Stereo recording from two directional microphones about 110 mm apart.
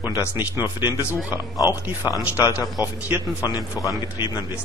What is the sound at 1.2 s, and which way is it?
A man's voice, 35° left (ahead or behind).